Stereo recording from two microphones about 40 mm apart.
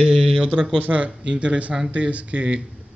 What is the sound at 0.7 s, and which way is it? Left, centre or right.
Speech, right.